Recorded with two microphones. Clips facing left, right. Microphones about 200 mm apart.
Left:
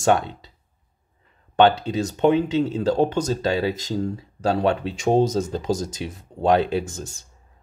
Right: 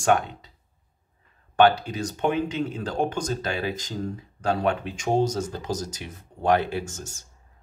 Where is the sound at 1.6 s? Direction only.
25° left (ahead or behind).